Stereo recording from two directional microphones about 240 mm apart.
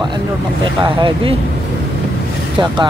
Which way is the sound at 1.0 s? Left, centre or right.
Centre.